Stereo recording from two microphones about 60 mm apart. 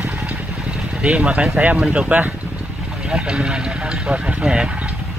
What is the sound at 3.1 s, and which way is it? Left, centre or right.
Speech, centre.